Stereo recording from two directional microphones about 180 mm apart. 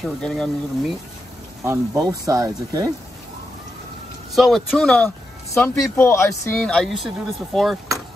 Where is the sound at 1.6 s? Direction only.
15° right (ahead or behind).